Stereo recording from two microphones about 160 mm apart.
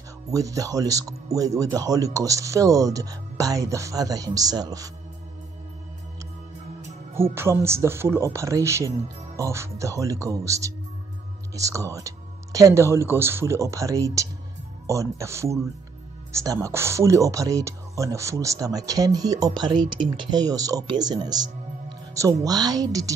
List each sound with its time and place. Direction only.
0.3 s speech: 20° right (ahead or behind)
7.3 s speech: 15° right (ahead or behind)